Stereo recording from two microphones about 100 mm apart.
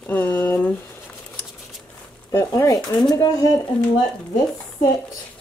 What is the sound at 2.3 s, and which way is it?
Speech, 35° left (ahead or behind).